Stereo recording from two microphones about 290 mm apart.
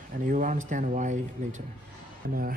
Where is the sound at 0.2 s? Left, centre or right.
Right.